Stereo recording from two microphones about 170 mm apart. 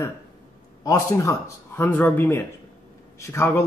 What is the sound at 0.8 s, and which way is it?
A man's voice, 20° left (ahead or behind).